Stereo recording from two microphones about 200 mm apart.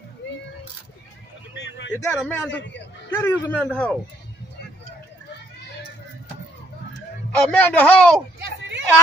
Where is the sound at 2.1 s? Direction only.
5° left (ahead or behind).